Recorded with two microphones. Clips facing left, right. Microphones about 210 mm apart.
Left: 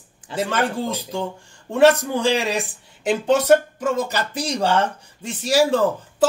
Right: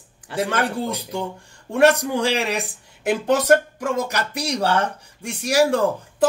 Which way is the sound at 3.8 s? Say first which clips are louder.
Left 1 dB; 10° right (ahead or behind).